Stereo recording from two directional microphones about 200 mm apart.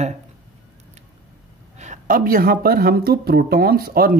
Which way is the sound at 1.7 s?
35° right (ahead or behind).